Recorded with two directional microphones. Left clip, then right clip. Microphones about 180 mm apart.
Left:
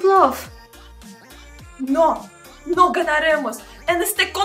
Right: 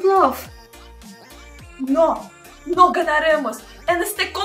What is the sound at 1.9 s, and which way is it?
A woman's voice, centre (ahead or behind).